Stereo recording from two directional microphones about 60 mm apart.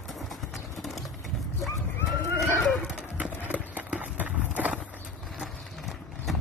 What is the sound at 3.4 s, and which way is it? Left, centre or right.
Horse, right.